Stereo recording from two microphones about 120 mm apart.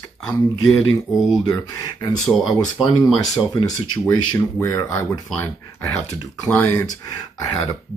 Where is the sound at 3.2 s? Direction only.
30° left (ahead or behind).